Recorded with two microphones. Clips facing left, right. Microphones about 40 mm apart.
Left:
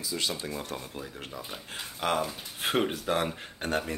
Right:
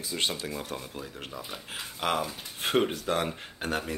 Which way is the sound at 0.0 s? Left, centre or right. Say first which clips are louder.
Right 1 dB; right.